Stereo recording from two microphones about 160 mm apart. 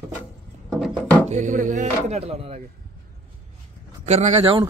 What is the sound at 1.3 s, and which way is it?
Speech, 50° right (ahead or behind).